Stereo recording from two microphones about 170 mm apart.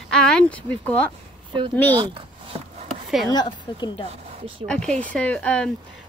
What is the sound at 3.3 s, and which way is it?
Speech, 25° left (ahead or behind).